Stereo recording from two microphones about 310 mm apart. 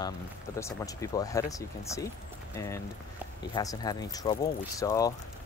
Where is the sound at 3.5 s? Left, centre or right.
Centre.